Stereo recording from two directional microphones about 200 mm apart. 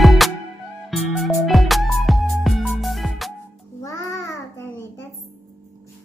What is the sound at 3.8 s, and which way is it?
Music, 15° left (ahead or behind).